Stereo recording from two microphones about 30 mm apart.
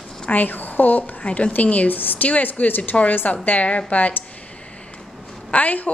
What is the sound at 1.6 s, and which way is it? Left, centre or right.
Speech, left.